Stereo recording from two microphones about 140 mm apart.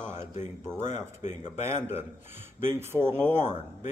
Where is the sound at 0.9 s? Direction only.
55° left (ahead or behind).